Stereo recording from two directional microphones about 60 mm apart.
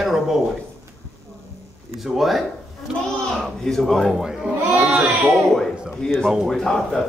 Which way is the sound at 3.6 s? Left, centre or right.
Centre.